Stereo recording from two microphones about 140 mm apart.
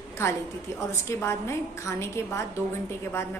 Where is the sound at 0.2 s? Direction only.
20° left (ahead or behind).